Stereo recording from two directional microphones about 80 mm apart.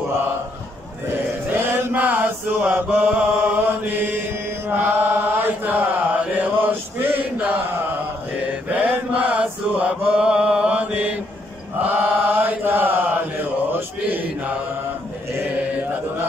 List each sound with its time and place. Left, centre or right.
1.5 s mantra: right
11.9 s chant: centre
13.7 s mantra: right